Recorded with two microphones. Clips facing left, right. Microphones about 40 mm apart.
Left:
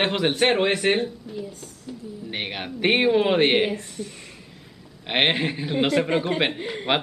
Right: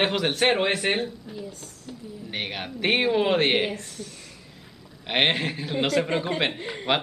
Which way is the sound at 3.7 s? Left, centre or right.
Centre.